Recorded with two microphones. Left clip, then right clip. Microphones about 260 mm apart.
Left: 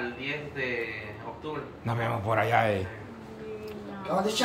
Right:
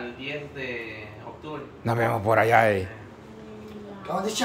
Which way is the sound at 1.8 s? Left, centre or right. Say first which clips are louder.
Right 7 dB; right.